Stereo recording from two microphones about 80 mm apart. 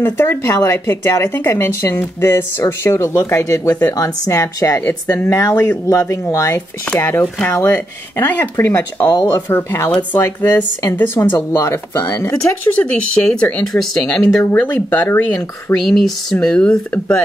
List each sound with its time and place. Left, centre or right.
0.0 s speech: left
4.8 s speech: left
9.0 s speech: left
9.5 s speech: left
13.7 s speech: centre
14.6 s speech: left
15.9 s speech: centre